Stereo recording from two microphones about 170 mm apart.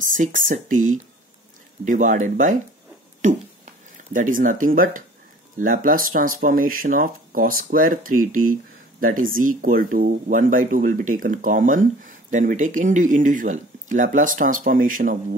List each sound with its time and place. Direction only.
0.0 s speech: 50° right (ahead or behind)